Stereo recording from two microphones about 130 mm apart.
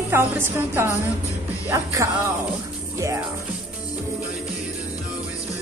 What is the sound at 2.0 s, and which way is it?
Speech, 25° right (ahead or behind).